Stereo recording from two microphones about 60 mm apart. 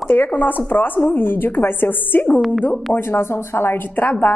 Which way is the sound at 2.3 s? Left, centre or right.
Centre.